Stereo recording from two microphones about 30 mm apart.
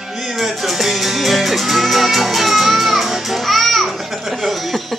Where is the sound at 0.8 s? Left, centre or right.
Centre.